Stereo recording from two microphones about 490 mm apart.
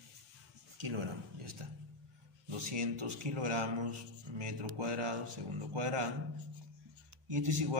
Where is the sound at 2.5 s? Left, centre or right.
Right.